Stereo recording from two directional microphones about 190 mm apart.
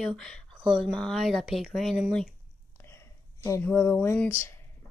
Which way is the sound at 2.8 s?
15° left (ahead or behind).